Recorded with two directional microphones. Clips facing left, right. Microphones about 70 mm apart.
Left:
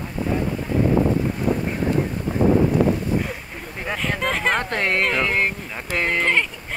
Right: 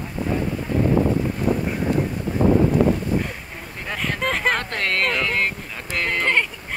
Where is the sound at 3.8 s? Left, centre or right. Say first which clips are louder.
Left 1 dB; centre.